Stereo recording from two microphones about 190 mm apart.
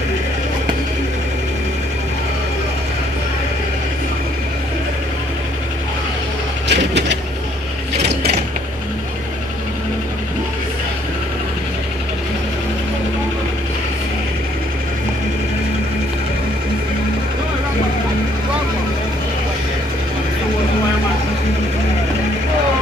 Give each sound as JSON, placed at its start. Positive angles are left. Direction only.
{"t": 6.7, "sound": "mechanisms", "side_deg": -65}